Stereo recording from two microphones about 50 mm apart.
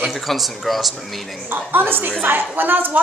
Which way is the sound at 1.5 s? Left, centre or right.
Right.